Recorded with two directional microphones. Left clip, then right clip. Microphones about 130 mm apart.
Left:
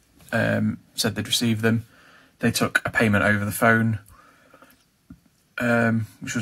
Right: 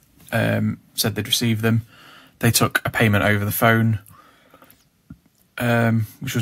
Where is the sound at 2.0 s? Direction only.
65° right (ahead or behind).